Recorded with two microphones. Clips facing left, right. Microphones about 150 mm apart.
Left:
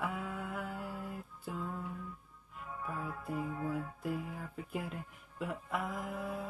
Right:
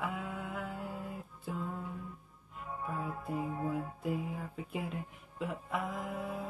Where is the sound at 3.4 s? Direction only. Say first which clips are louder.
Right 2 dB; 30° right (ahead or behind).